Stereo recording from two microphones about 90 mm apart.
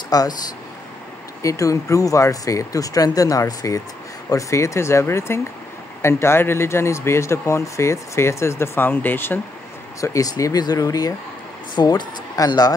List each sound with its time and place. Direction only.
0.1 s speech: 45° left (ahead or behind)
1.4 s speech: 35° left (ahead or behind)
9.9 s speech: 35° left (ahead or behind)
11.7 s speech: 55° left (ahead or behind)